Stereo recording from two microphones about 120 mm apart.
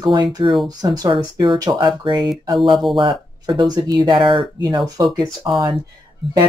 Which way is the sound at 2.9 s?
40° right (ahead or behind).